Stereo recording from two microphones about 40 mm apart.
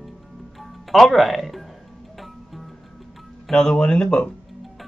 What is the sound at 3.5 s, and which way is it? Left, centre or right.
Speech, left.